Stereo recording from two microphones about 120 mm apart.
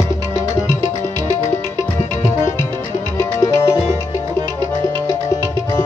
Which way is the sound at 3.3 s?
25° left (ahead or behind).